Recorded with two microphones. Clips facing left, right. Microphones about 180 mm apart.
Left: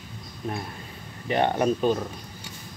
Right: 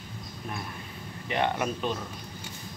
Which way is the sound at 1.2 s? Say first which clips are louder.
Left 6 dB; 35° left (ahead or behind).